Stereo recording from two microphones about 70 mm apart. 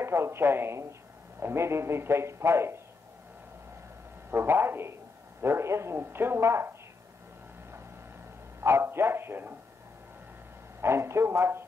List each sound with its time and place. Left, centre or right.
0.0 s a man's voice: right
4.3 s a man's voice: right
8.5 s a man's voice: right
10.8 s a man's voice: right